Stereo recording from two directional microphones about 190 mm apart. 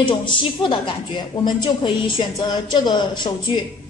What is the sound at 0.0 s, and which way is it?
A woman's voice, 25° left (ahead or behind).